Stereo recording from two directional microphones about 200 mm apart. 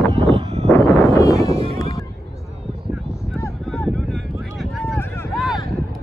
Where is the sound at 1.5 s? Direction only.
30° right (ahead or behind).